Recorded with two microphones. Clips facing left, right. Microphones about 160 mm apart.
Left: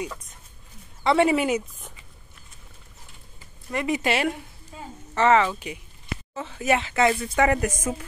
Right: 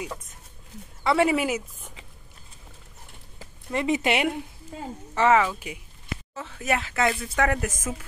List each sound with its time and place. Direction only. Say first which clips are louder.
1.0 s speech: left 2 dB; centre (ahead or behind)
3.7 s speech: right 1 dB; 25° right (ahead or behind)
5.1 s speech: left 1 dB; 10° right (ahead or behind)